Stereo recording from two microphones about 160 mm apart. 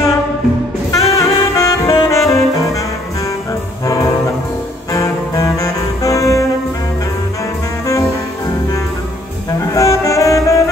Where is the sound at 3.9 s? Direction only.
20° left (ahead or behind).